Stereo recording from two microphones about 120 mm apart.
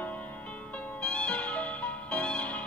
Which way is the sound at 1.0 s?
10° left (ahead or behind).